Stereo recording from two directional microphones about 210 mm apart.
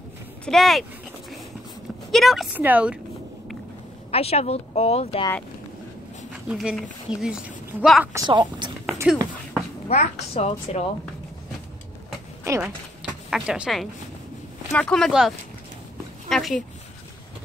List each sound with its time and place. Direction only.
0.5 s speech: centre (ahead or behind)
2.0 s speech: centre (ahead or behind)
4.1 s speech: 30° left (ahead or behind)
6.3 s speech: 5° right (ahead or behind)
8.1 s a woman's voice: 20° right (ahead or behind)
9.1 s speech: 5° right (ahead or behind)
9.8 s a woman's voice: 30° left (ahead or behind)
12.4 s typing: 15° right (ahead or behind)
13.3 s speech: 5° right (ahead or behind)